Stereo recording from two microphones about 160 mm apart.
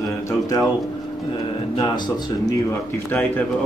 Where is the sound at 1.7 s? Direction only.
30° left (ahead or behind).